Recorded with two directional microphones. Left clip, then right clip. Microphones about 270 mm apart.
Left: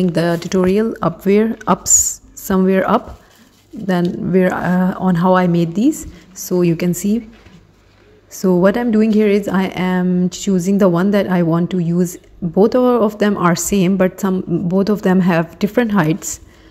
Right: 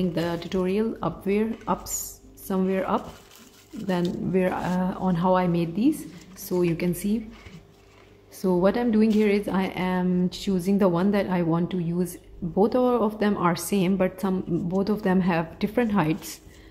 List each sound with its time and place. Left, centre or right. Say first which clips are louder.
0.0 s speech: left 10 dB; left
8.4 s speech: left 8 dB; centre